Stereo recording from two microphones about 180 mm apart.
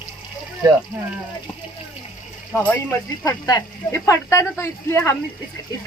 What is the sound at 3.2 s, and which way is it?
Speech, 20° left (ahead or behind).